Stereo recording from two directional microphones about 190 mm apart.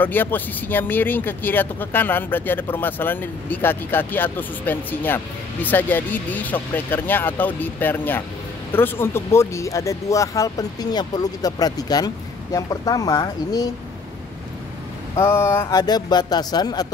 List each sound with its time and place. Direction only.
0.0 s speech: 10° left (ahead or behind)
15.1 s speech: 15° left (ahead or behind)